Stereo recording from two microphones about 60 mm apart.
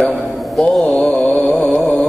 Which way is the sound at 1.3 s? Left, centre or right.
Left.